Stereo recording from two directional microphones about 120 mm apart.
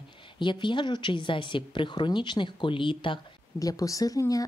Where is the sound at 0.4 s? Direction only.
40° left (ahead or behind).